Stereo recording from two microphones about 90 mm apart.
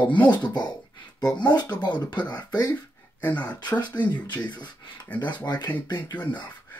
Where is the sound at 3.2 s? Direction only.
15° left (ahead or behind).